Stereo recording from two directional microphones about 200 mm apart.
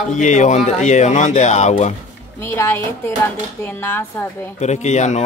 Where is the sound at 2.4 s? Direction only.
15° left (ahead or behind).